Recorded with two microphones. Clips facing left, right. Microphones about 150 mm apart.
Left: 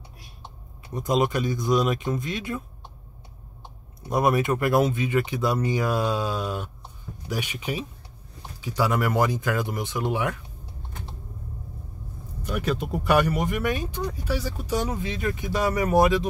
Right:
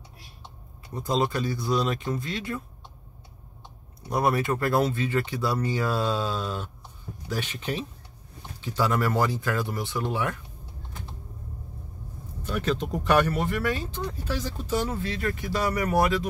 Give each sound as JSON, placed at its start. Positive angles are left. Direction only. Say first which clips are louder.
{"t": 0.9, "sound": "speech", "louder": "left 3 dB", "side_deg": 20}
{"t": 4.1, "sound": "speech", "louder": "left 2 dB", "side_deg": 20}
{"t": 12.4, "sound": "speech", "louder": "even", "side_deg": 10}